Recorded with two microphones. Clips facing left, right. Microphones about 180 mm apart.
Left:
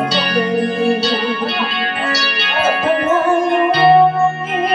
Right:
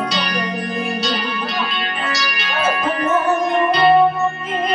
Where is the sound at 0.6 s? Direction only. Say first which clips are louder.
Left 7 dB; 30° left (ahead or behind).